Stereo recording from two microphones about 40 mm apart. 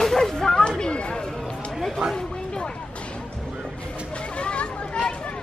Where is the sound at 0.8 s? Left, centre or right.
Left.